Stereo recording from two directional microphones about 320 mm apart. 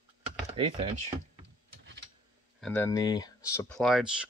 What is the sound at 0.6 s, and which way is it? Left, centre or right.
Speech, centre.